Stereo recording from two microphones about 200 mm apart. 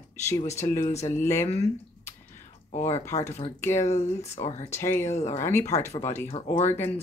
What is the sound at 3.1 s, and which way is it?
Speech, 30° left (ahead or behind).